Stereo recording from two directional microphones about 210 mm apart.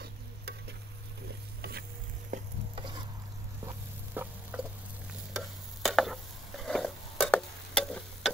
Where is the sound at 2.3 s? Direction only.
35° right (ahead or behind).